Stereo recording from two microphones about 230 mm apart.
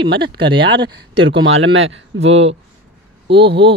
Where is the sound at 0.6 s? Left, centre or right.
Right.